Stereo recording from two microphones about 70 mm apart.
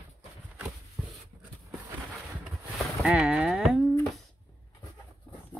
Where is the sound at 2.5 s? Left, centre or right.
Centre.